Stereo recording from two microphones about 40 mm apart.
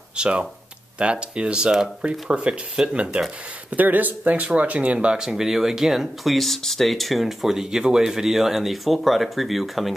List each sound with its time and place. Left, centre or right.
0.1 s speech: right
2.0 s speech: right
3.7 s speech: right
5.3 s speech: centre
6.3 s speech: centre